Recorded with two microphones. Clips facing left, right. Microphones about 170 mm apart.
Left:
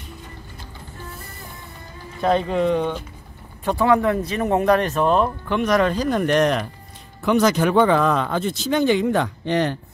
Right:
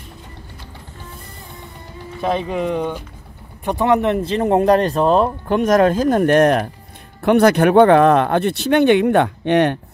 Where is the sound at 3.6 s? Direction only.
20° right (ahead or behind); by 9.8 s 65° right (ahead or behind).